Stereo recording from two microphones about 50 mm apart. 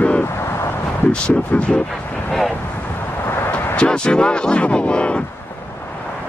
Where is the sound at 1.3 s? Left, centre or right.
Left.